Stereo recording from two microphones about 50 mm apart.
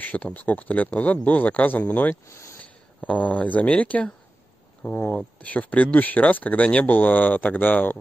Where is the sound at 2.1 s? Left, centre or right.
Left.